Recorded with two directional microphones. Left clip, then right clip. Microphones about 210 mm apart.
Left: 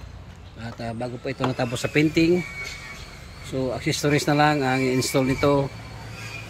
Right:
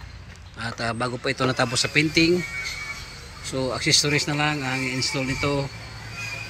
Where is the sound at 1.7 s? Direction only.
15° left (ahead or behind).